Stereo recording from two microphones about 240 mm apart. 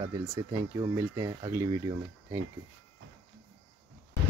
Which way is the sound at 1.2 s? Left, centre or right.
Centre.